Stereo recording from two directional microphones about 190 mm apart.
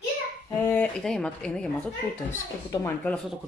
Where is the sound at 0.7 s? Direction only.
5° left (ahead or behind).